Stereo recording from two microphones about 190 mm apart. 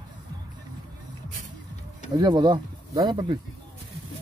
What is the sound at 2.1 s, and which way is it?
Speech, 20° right (ahead or behind).